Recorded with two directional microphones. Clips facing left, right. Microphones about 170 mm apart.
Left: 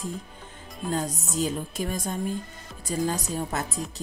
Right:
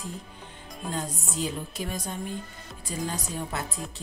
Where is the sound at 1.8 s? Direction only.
45° left (ahead or behind).